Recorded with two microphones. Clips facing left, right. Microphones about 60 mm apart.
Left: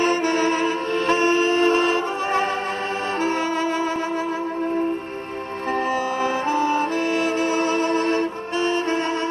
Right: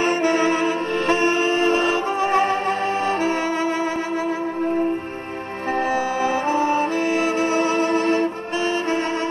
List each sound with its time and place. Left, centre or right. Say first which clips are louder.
0.0 s music: right 1 dB; right
5.7 s music: right 2 dB; right